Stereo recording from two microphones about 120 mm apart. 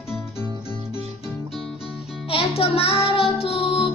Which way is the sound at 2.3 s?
55° left (ahead or behind).